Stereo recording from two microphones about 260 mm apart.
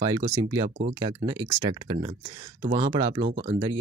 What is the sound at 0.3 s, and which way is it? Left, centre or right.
Speech, centre.